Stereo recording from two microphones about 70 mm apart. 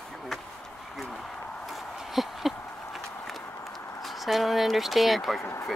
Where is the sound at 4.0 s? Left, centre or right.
Centre.